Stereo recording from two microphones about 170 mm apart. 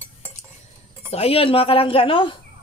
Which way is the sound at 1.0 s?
35° left (ahead or behind).